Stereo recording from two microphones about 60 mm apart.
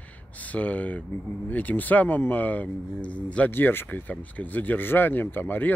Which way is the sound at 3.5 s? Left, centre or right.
Left.